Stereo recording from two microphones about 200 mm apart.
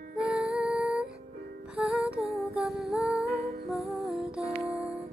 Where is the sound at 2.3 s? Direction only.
Centre (ahead or behind).